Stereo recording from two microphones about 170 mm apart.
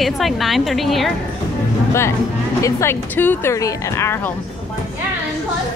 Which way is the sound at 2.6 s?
15° left (ahead or behind).